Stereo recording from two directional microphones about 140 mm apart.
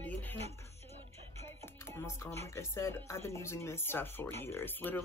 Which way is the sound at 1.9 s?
20° left (ahead or behind).